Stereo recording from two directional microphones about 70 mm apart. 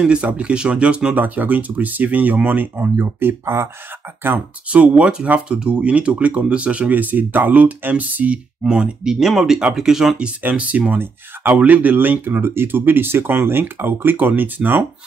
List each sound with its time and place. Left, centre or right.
0.0 s speech: centre; by 3.6 s right
4.6 s speech: centre
8.6 s speech: centre; by 14.9 s right